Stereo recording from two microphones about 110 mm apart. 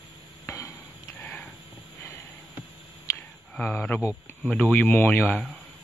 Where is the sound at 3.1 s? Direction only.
25° left (ahead or behind).